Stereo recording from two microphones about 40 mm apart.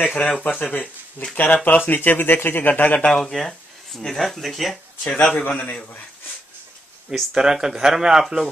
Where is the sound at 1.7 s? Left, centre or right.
Left.